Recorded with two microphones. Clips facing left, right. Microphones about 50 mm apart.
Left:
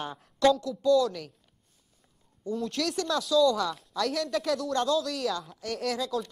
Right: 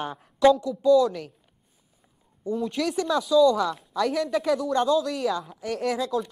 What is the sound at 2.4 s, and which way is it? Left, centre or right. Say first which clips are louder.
Speech: right 4 dB; centre.